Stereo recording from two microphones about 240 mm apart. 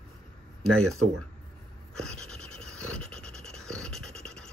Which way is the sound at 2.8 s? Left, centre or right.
Centre.